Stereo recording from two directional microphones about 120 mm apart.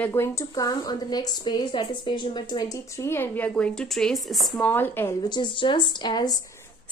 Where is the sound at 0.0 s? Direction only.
20° left (ahead or behind); by 4.6 s centre (ahead or behind).